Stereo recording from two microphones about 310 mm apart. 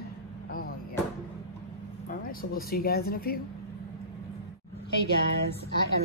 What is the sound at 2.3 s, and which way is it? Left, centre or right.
Speech, left.